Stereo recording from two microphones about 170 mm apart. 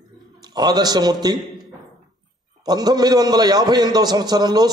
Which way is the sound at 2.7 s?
25° right (ahead or behind).